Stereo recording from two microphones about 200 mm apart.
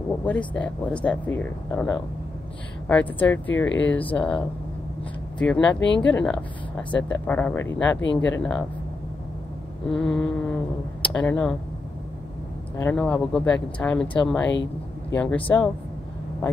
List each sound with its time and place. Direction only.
0.2 s a woman's voice: 5° left (ahead or behind)
9.8 s a woman's voice: 5° left (ahead or behind)
12.7 s a woman's voice: 10° left (ahead or behind)
14.5 s speech: 65° left (ahead or behind)
15.1 s speech: 10° left (ahead or behind)